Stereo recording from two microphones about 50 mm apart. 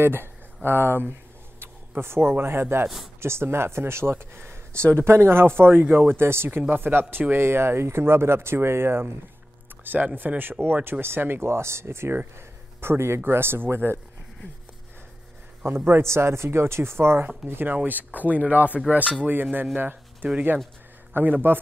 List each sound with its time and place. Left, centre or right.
0.0 s speech: right
10.1 s speech: right
12.4 s a sound: right
13.2 s speech: right
15.6 s speech: right
17.7 s speech: right
19.5 s speech: right